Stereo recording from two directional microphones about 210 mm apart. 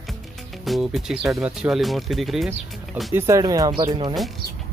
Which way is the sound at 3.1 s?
15° right (ahead or behind).